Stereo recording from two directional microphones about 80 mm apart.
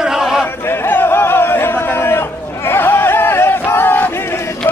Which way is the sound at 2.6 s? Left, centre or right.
Left.